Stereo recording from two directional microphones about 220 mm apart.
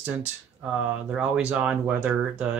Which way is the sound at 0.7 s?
5° right (ahead or behind).